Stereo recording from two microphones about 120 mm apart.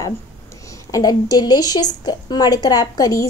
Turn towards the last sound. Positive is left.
turn(degrees=30)  # may be behind; listen again after turning